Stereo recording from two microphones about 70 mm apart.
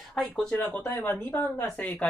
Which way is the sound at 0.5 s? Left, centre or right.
Left.